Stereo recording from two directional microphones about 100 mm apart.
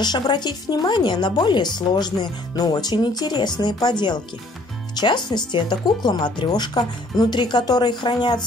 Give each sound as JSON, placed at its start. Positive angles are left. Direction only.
{"t": 0.0, "sound": "speech", "side_deg": 45}
{"t": 4.9, "sound": "speech", "side_deg": 45}